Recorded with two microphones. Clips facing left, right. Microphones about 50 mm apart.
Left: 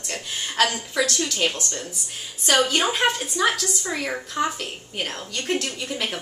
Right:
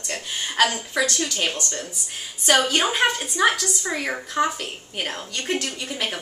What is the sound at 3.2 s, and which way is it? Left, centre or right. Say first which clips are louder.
A woman's voice: right 2 dB; centre.